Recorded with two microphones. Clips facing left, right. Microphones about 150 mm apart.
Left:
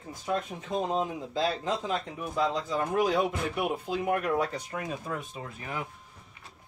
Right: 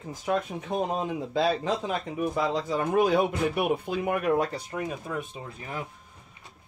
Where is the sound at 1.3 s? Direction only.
65° right (ahead or behind).